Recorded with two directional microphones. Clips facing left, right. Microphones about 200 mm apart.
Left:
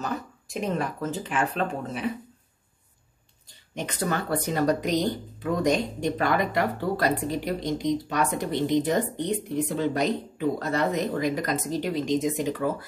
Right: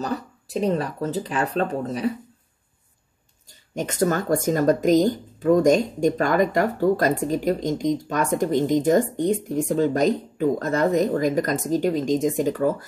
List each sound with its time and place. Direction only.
0.0 s speech: 35° right (ahead or behind)
3.4 s speech: 45° right (ahead or behind)